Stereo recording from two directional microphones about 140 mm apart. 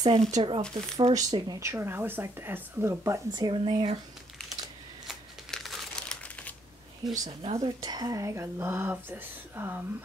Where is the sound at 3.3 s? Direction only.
35° right (ahead or behind).